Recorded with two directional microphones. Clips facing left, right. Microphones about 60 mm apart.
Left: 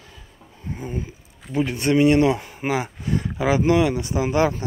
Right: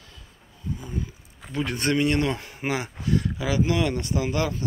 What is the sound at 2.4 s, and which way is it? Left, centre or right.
Speech, centre.